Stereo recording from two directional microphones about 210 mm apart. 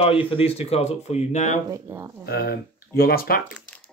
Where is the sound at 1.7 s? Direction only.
15° right (ahead or behind).